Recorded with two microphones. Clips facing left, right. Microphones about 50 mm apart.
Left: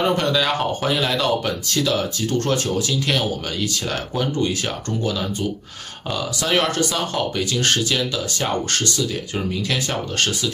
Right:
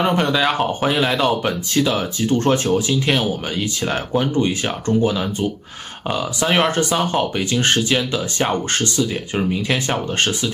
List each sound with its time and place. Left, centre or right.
0.0 s speech: right